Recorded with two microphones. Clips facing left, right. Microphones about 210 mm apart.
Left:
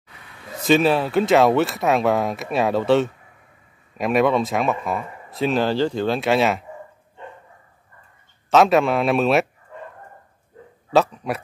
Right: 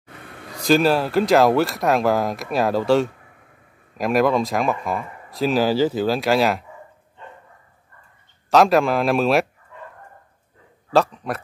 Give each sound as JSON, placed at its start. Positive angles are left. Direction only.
{"t": 0.1, "sound": "a sound", "side_deg": -50}
{"t": 0.7, "sound": "speech", "side_deg": 0}
{"t": 8.5, "sound": "speech", "side_deg": 0}
{"t": 10.9, "sound": "a man's voice", "side_deg": 5}